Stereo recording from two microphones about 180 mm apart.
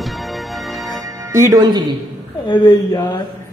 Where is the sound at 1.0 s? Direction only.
15° right (ahead or behind).